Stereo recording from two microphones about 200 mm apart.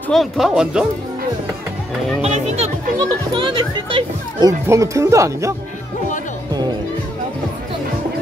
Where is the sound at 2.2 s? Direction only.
35° right (ahead or behind).